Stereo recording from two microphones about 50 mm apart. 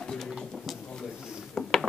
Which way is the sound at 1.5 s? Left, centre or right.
Centre.